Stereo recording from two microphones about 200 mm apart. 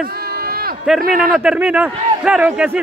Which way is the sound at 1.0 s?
45° right (ahead or behind).